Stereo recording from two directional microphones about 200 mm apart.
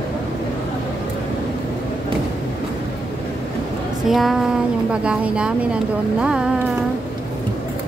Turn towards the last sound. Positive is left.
turn(degrees=-5)  # may be behind; listen again after turning